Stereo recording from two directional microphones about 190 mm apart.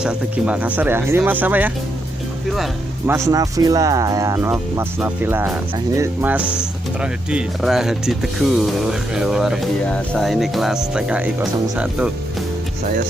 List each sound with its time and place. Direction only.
0.0 s speech: 5° right (ahead or behind)
3.1 s speech: 20° right (ahead or behind)